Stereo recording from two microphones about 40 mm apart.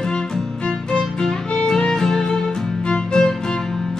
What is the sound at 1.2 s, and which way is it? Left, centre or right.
Violin, centre.